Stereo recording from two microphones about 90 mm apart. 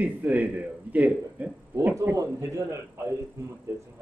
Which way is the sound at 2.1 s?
35° right (ahead or behind).